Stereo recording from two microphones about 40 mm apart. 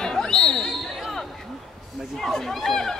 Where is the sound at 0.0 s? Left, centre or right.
Centre.